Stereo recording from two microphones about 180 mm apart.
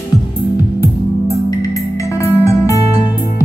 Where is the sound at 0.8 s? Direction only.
20° left (ahead or behind).